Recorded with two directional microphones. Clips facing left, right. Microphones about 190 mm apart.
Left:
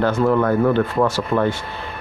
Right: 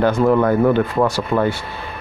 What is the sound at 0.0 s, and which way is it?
Speech, 15° right (ahead or behind).